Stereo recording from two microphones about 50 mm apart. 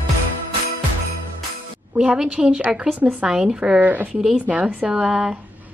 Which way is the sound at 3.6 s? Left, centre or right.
Right.